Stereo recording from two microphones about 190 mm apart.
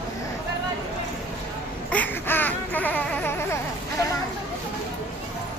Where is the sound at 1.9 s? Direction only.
10° left (ahead or behind).